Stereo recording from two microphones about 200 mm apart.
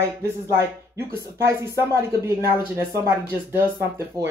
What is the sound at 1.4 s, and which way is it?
Speech, 15° right (ahead or behind).